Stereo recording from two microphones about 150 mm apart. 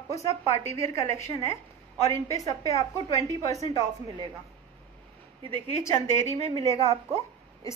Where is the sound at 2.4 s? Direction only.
20° left (ahead or behind).